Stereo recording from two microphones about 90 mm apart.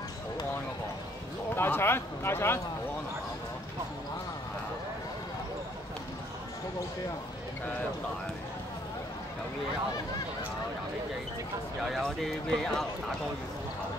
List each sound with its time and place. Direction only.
1.5 s speech: 25° left (ahead or behind)
11.8 s speech: centre (ahead or behind)